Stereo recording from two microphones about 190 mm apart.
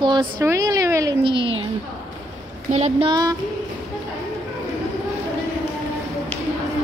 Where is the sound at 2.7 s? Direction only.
30° right (ahead or behind).